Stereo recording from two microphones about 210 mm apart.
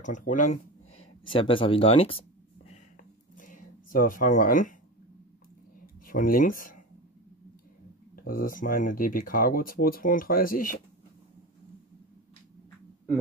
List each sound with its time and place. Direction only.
0.0 s speech: 35° left (ahead or behind)
1.2 s speech: 25° left (ahead or behind)
3.0 s a sound: 40° left (ahead or behind)
6.1 s speech: 40° left (ahead or behind)
8.2 s speech: 45° left (ahead or behind)